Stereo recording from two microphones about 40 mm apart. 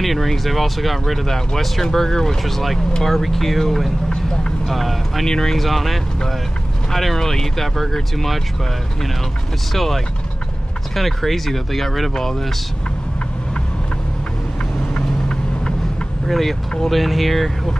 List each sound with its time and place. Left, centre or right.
0.0 s speech: centre
4.1 s vehicle: left
4.6 s speech: centre
5.3 s speech: centre
5.6 s speech: centre
9.8 s speech: centre
15.0 s vehicle: left
16.3 s speech: centre